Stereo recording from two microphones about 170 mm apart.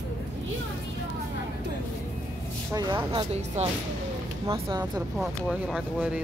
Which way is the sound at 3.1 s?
40° right (ahead or behind).